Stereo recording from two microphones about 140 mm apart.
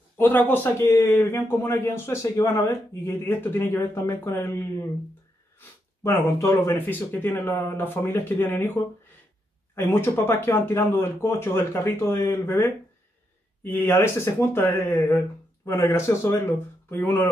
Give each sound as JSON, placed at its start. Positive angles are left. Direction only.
{"t": 0.2, "sound": "a man's voice", "side_deg": 15}
{"t": 6.0, "sound": "a man's voice", "side_deg": 20}
{"t": 9.8, "sound": "a man's voice", "side_deg": 15}
{"t": 13.7, "sound": "a man's voice", "side_deg": 15}